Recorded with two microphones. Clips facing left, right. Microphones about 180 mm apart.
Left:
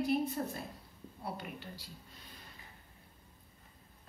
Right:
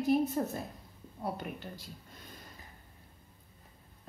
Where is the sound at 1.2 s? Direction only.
45° right (ahead or behind).